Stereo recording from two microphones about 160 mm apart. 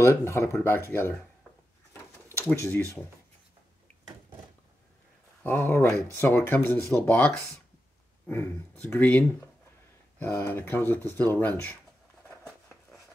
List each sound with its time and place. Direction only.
0.0 s speech: 15° left (ahead or behind)
2.2 s speech: 15° left (ahead or behind)
5.4 s speech: 10° left (ahead or behind)